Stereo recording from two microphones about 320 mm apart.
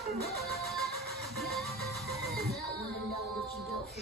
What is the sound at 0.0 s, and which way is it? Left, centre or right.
Music, right.